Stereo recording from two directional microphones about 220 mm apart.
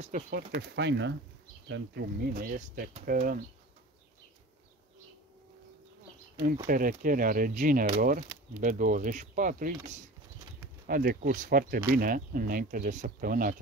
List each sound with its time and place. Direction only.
0.0 s speech: 40° right (ahead or behind)
6.4 s speech: 35° right (ahead or behind)
10.9 s speech: 40° right (ahead or behind)